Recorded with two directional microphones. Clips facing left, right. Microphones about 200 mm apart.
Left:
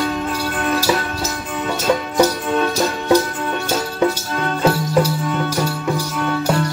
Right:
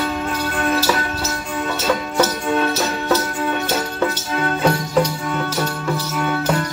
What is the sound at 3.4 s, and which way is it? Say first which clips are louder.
Music: right 1 dB; 10° left (ahead or behind).